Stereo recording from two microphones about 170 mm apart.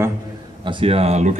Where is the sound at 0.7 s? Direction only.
30° right (ahead or behind).